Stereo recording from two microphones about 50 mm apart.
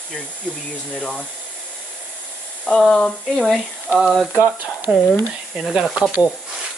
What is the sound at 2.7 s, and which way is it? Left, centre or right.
Speech, centre.